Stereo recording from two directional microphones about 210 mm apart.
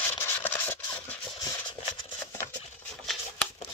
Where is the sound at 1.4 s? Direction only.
20° left (ahead or behind).